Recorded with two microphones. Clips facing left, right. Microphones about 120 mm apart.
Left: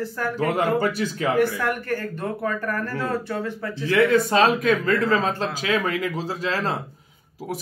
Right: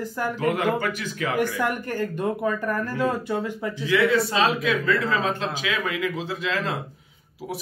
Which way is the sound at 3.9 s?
50° left (ahead or behind).